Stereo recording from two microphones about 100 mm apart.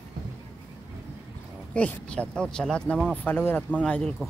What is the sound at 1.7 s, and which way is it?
Speech, 15° left (ahead or behind).